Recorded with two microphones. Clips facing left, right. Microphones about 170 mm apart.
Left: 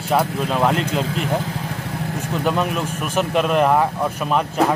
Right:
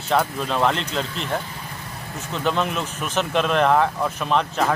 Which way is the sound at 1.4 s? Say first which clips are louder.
Left 8 dB; 90° left.